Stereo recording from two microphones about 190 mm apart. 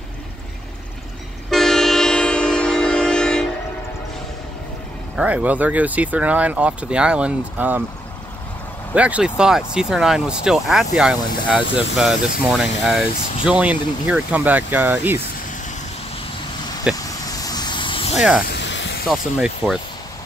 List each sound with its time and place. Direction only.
1.5 s train: centre (ahead or behind)
5.1 s speech: 5° right (ahead or behind)
8.9 s speech: 5° right (ahead or behind)
17.0 s vehicle: 20° left (ahead or behind)
18.1 s speech: centre (ahead or behind)
18.5 s snake: 70° left (ahead or behind)
19.0 s speech: centre (ahead or behind)